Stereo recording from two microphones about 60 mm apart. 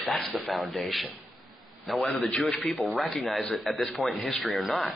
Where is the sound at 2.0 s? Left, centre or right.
Left.